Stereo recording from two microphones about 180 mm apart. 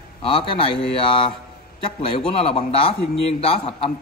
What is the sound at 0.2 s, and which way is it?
A man's voice, 30° left (ahead or behind).